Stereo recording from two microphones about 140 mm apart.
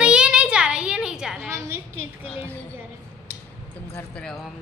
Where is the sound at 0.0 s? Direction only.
5° right (ahead or behind).